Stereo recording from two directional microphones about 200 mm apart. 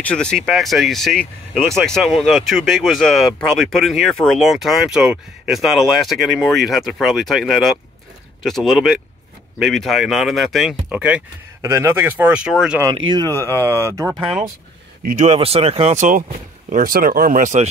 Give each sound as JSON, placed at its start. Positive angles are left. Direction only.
{"t": 0.0, "sound": "speech", "side_deg": 5}
{"t": 12.8, "sound": "speech", "side_deg": -25}
{"t": 15.0, "sound": "speech", "side_deg": -35}